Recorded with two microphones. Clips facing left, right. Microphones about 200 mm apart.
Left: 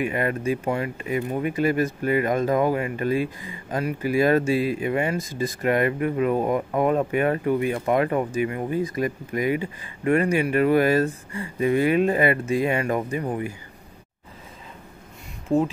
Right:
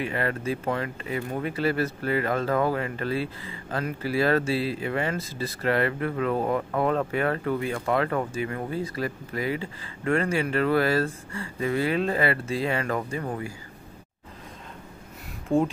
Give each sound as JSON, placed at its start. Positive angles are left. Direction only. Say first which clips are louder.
{"t": 0.0, "sound": "speech", "louder": "left 4 dB", "side_deg": 15}
{"t": 15.4, "sound": "speech", "louder": "left 2 dB", "side_deg": 0}